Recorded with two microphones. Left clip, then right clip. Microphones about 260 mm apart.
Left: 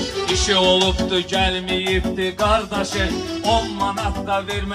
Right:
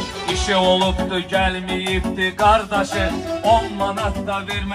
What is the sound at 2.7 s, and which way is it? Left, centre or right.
Speech, centre.